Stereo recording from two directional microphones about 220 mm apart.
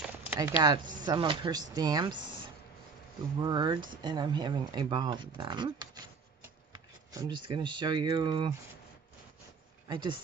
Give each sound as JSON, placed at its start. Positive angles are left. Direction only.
{"t": 0.3, "sound": "speech", "side_deg": -10}
{"t": 3.3, "sound": "speech", "side_deg": -20}
{"t": 6.7, "sound": "speech", "side_deg": -15}
{"t": 9.8, "sound": "speech", "side_deg": -20}